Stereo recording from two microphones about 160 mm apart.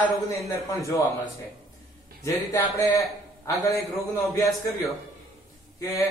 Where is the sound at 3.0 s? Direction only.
20° left (ahead or behind).